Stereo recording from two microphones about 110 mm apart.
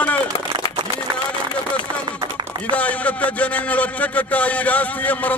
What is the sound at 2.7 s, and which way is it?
A man's voice, 15° left (ahead or behind).